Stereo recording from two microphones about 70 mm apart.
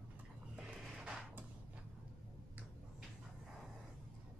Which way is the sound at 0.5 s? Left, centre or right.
Centre.